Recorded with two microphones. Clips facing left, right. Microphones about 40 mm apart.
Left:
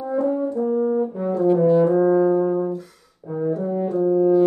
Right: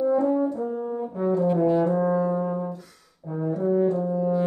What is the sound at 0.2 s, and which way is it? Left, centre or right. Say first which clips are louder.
French horn: left 2 dB; centre.